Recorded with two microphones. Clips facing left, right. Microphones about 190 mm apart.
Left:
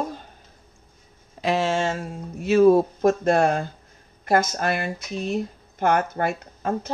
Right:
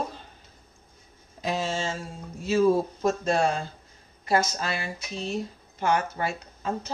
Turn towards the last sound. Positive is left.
turn(degrees=55)  # may be behind; listen again after turning